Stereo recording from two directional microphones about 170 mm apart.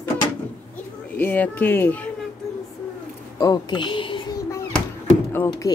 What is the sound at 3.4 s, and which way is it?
Speech, 25° left (ahead or behind).